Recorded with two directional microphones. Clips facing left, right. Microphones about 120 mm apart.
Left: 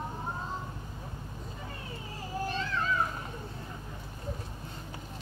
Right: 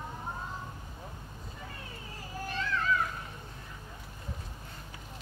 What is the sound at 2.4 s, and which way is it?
Children playing, 30° left (ahead or behind).